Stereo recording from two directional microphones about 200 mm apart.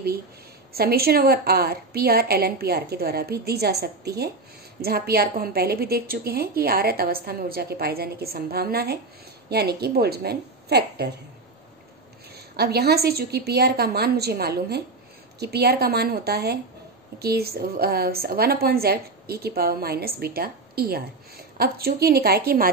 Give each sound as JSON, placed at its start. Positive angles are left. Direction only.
{"t": 0.7, "sound": "a woman's voice", "side_deg": -50}
{"t": 12.5, "sound": "a woman's voice", "side_deg": -50}